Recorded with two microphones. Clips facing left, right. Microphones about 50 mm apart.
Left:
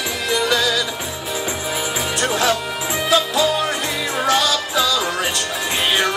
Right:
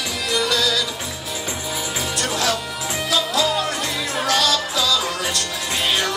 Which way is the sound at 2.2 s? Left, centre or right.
Left.